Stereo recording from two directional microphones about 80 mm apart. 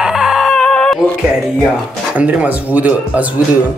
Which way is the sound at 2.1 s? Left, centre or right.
Centre.